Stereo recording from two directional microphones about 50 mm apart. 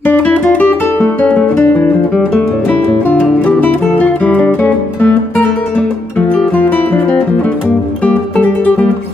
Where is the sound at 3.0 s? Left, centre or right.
Left.